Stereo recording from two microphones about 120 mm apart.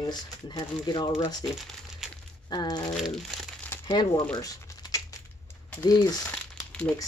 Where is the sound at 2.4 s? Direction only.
35° left (ahead or behind).